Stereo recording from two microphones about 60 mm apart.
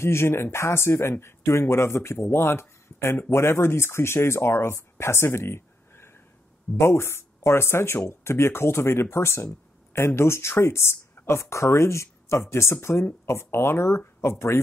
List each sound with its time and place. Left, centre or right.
0.0 s speech: left